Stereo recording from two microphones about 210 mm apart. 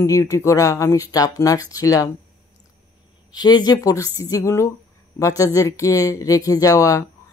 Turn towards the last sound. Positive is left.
turn(degrees=15)  # may be behind; listen again after turning